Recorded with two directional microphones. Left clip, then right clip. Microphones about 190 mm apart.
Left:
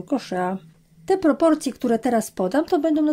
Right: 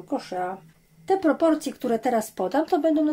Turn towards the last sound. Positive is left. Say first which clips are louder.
# left 1 dB
turn(degrees=30)  # may be behind; listen again after turning